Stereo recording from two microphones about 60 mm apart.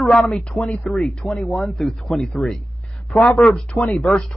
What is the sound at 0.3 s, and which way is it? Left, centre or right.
Speech, centre.